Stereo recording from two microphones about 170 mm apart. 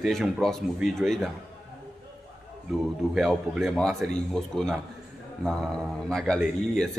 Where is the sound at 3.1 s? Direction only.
Centre (ahead or behind).